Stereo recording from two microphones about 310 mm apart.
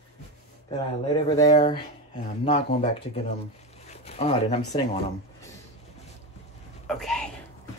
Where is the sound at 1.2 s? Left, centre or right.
Centre.